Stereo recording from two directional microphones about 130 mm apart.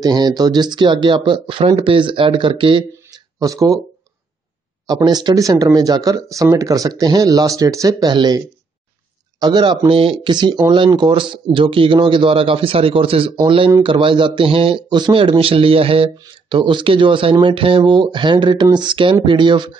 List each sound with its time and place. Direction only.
0.0 s speech: 30° right (ahead or behind)
3.3 s speech: 25° right (ahead or behind)
4.8 s speech: 30° right (ahead or behind)
9.4 s speech: 35° right (ahead or behind)